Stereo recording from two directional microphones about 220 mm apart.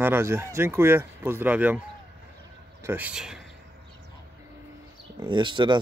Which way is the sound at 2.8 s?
5° right (ahead or behind).